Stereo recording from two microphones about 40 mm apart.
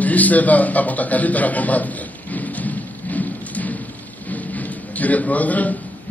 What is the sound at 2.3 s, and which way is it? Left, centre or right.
Thunder, left.